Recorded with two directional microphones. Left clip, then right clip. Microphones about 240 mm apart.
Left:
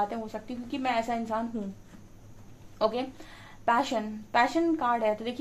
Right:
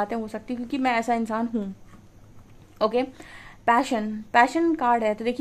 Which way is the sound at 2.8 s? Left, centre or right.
Right.